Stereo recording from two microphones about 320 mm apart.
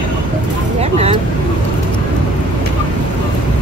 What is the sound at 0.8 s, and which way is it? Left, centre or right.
Vehicle, centre.